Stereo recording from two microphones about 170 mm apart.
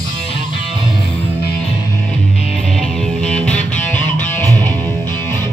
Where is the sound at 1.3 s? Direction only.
70° left (ahead or behind).